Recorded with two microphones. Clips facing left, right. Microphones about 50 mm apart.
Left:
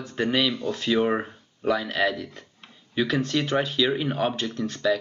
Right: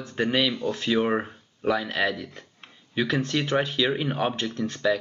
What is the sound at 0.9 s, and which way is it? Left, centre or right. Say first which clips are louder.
Speech: left 2 dB; centre.